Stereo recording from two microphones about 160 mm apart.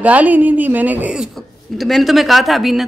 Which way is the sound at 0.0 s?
10° right (ahead or behind).